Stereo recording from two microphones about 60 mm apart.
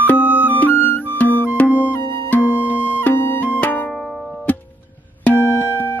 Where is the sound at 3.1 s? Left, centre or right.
Left.